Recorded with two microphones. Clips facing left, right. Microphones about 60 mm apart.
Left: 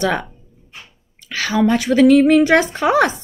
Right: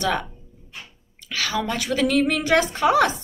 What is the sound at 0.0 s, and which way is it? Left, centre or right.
Speech, left.